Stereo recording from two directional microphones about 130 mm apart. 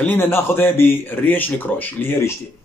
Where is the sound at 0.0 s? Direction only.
15° left (ahead or behind).